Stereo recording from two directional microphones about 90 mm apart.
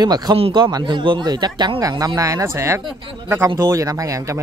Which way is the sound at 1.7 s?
40° right (ahead or behind).